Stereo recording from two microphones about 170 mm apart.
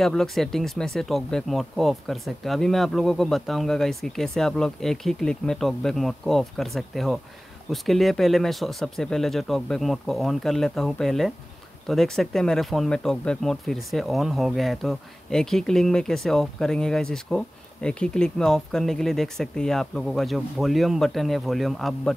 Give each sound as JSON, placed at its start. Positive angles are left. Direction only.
{"t": 0.0, "sound": "speech", "side_deg": 0}